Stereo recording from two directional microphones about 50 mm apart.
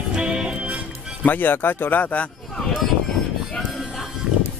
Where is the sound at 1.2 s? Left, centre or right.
Left.